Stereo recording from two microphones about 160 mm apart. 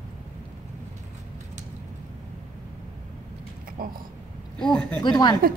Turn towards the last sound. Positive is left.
turn(degrees=25)  # may be behind; listen again after turning